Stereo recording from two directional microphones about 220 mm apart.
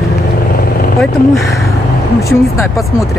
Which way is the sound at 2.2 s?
15° left (ahead or behind).